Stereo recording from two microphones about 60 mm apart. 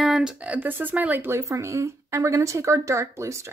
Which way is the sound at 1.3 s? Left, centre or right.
Right.